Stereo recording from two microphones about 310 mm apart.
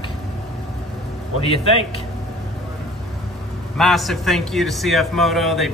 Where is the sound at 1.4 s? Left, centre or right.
Centre.